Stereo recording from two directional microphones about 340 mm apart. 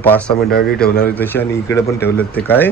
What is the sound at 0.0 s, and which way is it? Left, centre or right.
Speech, centre.